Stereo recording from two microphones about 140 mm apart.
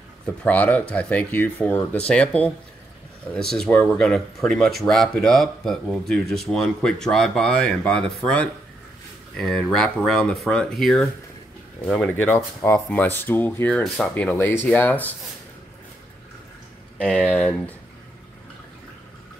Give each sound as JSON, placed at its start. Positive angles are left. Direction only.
{"t": 0.4, "sound": "speech", "side_deg": 10}
{"t": 17.1, "sound": "speech", "side_deg": 10}